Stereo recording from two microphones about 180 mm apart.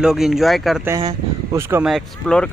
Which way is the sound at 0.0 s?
5° right (ahead or behind).